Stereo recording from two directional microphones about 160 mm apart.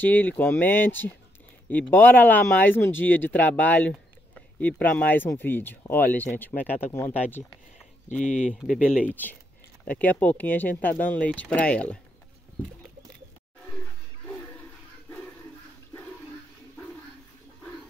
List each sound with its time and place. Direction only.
0.0 s speech: 10° left (ahead or behind)
8.1 s speech: 50° left (ahead or behind)
9.1 s speech: 10° left (ahead or behind)